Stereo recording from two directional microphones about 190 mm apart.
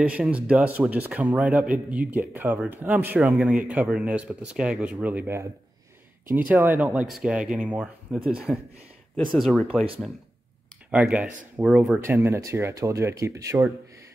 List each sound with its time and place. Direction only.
0.0 s speech: 5° right (ahead or behind)
6.5 s speech: 10° right (ahead or behind)
10.9 s speech: 5° right (ahead or behind)
12.0 s speech: 15° right (ahead or behind)